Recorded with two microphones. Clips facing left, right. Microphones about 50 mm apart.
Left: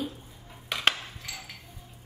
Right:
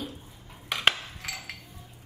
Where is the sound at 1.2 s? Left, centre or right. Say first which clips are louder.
Right 6 dB; right.